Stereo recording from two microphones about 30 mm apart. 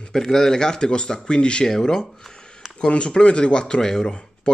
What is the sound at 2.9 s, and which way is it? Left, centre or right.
A man's voice, left.